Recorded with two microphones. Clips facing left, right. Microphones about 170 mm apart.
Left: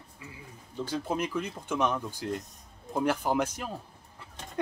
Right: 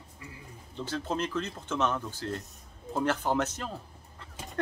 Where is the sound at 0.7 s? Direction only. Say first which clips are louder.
Left 1 dB; 10° left (ahead or behind).